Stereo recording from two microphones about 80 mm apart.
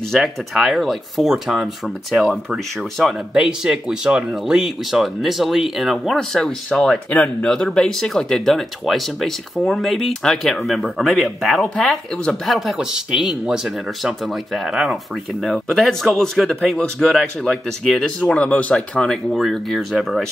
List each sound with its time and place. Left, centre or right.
0.1 s speech: centre
6.1 s speech: centre